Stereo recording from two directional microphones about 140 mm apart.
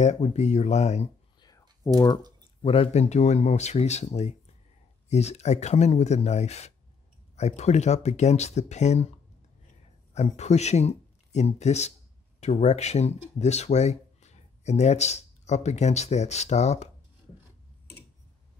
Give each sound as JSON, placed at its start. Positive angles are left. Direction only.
{"t": 0.0, "sound": "speech", "side_deg": 55}
{"t": 1.4, "sound": "clicking", "side_deg": 25}
{"t": 2.6, "sound": "speech", "side_deg": 40}
{"t": 10.1, "sound": "speech", "side_deg": 50}